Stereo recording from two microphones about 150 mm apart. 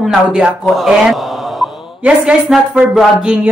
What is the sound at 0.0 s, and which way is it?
A man's voice, 5° right (ahead or behind).